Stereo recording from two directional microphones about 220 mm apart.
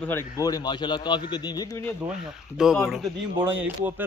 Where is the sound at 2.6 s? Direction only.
Centre (ahead or behind).